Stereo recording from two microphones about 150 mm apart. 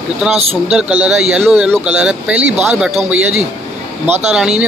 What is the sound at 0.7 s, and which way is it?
Speech, 10° right (ahead or behind).